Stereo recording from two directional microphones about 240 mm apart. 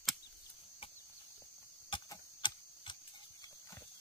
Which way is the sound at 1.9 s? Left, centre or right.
Centre.